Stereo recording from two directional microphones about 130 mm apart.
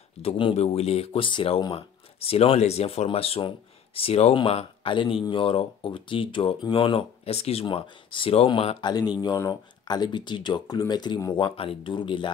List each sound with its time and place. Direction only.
0.2 s speech: 45° left (ahead or behind)
7.6 s speech: 40° left (ahead or behind)
9.4 s speech: 30° left (ahead or behind)
11.3 s speech: 40° left (ahead or behind)